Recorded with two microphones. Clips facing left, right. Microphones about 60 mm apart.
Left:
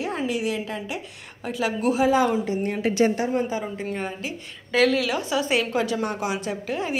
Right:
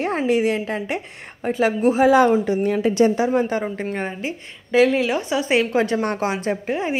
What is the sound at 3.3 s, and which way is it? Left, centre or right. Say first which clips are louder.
Speech: right 5 dB; right.